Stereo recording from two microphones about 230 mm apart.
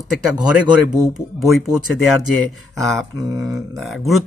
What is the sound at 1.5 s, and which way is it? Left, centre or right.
Speech, centre.